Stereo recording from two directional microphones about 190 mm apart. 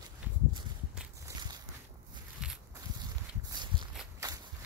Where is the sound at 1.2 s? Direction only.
20° right (ahead or behind).